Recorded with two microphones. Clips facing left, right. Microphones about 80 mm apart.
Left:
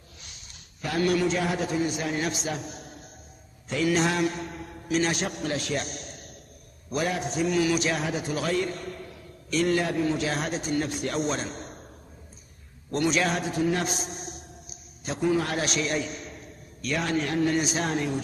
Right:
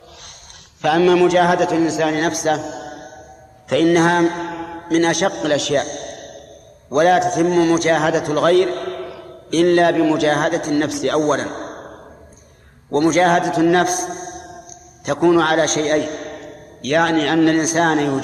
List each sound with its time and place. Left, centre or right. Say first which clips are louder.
0.8 s a man's voice: right 12 dB; right
3.6 s mantra: right 11 dB; right
4.5 s mantra: right 12 dB; right
4.8 s a man's voice: right 10 dB; right
5.8 s a sound: right 12 dB; right
6.9 s a man's voice: right 14 dB; right
12.9 s a man's voice: right 11 dB; right
15.6 s a man's voice: right 11 dB; right
17.6 s a man's voice: right 11 dB; right